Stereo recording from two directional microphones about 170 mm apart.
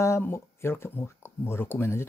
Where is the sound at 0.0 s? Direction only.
15° left (ahead or behind).